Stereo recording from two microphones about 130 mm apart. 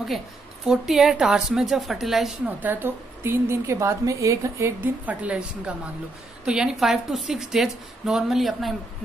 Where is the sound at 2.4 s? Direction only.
15° right (ahead or behind).